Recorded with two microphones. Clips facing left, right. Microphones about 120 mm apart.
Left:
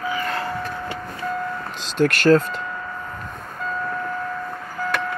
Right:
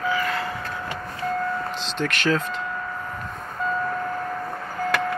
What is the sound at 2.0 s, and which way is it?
Speech, 55° left (ahead or behind).